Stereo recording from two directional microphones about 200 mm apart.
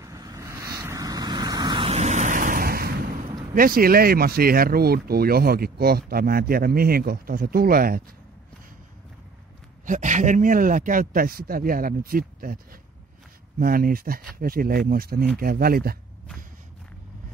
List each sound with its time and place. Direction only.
0.0 s vehicle: 15° right (ahead or behind); by 3.2 s 50° right (ahead or behind)
3.5 s speech: 45° right (ahead or behind)
9.8 s speech: 40° right (ahead or behind)
13.6 s speech: 45° right (ahead or behind)